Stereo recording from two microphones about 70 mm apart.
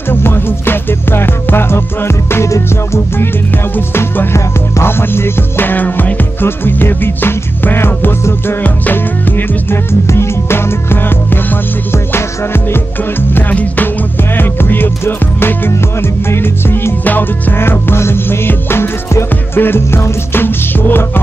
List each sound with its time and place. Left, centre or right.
0.1 s music: left
3.7 s music: left
9.7 s music: left
13.3 s music: left